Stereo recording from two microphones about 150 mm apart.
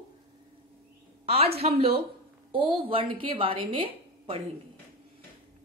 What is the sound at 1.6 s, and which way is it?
A woman's voice, 40° right (ahead or behind).